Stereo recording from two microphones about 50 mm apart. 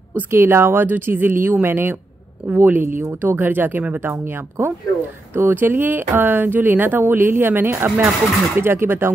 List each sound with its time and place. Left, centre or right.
0.3 s speech: right
5.3 s speech: right